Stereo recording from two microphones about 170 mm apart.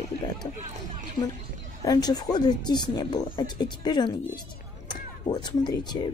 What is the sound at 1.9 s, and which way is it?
Speech, 25° left (ahead or behind).